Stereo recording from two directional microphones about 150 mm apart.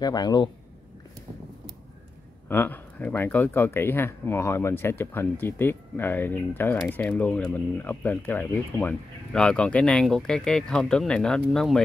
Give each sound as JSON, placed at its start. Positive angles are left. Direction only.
{"t": 0.0, "sound": "a man's voice", "side_deg": 25}
{"t": 2.4, "sound": "speech", "side_deg": 15}